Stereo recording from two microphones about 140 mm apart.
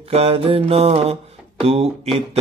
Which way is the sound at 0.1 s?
45° right (ahead or behind).